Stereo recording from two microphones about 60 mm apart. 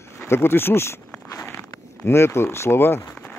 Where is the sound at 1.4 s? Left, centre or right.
Left.